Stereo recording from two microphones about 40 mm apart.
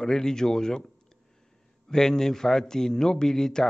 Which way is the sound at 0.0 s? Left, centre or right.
Centre.